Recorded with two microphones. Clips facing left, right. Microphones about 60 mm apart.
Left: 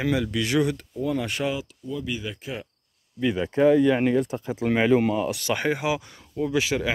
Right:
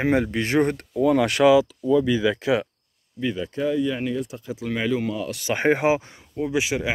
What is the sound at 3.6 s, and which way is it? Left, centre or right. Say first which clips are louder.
Speech: left 7 dB; left.